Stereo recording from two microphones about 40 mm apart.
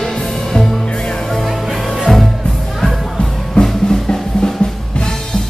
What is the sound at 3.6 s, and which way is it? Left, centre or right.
Music, centre.